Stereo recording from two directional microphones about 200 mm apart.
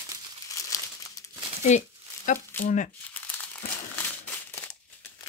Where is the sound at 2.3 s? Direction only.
40° left (ahead or behind).